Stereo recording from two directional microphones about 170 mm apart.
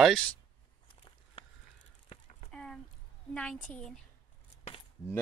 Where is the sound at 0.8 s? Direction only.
30° left (ahead or behind).